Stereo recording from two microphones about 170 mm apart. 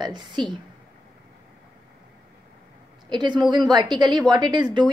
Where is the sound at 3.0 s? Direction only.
25° right (ahead or behind).